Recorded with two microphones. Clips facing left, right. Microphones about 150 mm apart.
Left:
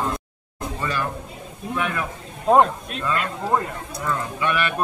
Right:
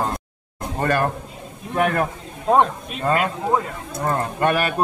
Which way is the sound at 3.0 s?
50° right (ahead or behind).